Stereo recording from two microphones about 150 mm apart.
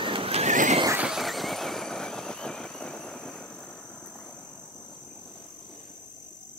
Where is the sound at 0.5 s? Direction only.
55° right (ahead or behind).